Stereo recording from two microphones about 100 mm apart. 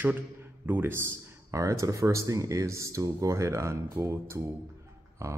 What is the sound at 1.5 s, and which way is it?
Speech, 35° right (ahead or behind).